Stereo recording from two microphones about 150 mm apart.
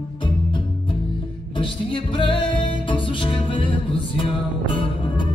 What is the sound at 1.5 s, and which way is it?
Music, 35° left (ahead or behind).